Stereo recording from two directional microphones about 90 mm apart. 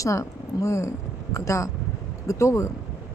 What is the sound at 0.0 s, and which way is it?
Speech, 35° left (ahead or behind).